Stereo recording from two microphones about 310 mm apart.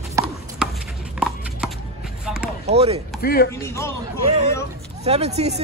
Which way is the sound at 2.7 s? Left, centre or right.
Centre.